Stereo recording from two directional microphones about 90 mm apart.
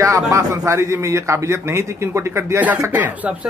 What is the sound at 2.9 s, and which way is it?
Speech, 20° right (ahead or behind).